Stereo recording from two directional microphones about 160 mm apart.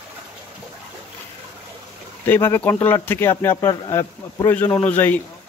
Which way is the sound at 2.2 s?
15° left (ahead or behind).